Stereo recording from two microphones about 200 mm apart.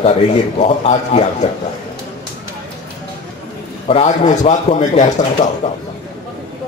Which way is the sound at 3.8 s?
35° left (ahead or behind).